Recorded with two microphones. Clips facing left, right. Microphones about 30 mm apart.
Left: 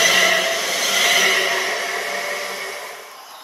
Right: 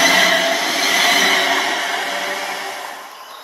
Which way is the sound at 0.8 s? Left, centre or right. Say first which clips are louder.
Right 2 dB; right.